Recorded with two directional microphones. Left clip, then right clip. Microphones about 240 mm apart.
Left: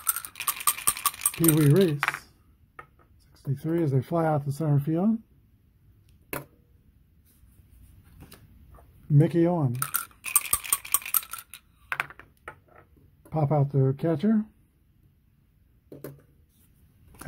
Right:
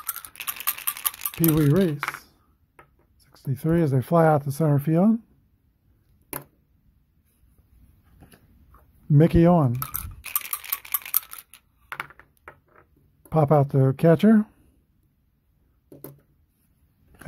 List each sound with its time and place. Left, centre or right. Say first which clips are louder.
0.4 s a sound: left 2 dB; centre
3.3 s speech: right 5 dB; right
9.1 s speech: right 5 dB; right
11.5 s coin: left 4 dB; centre
13.3 s speech: right 7 dB; right